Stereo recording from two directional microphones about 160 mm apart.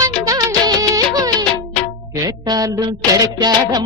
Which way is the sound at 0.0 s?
20° right (ahead or behind).